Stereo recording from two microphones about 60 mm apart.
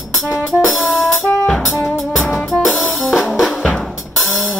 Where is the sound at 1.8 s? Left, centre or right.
Centre.